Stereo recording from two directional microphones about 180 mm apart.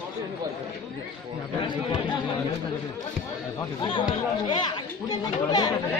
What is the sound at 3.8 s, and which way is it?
Speech, 25° left (ahead or behind).